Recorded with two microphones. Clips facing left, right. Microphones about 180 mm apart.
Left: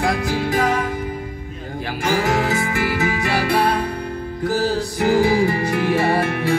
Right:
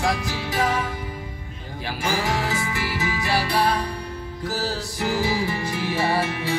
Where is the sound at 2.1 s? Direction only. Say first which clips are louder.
Left 6 dB; 55° left (ahead or behind).